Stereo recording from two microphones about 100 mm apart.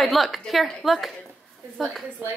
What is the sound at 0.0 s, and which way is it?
A woman's voice, centre (ahead or behind).